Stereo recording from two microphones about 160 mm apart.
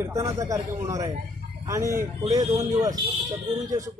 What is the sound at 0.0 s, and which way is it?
Speech, 20° right (ahead or behind).